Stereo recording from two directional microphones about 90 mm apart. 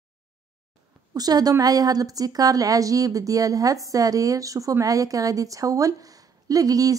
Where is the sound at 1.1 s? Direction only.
45° right (ahead or behind).